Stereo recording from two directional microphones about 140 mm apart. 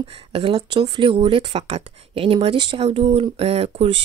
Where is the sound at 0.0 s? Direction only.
40° right (ahead or behind).